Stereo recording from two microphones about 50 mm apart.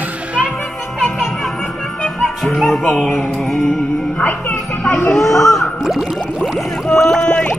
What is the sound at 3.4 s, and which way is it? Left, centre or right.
Music, centre.